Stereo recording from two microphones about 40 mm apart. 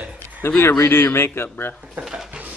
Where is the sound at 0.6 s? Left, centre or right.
Left.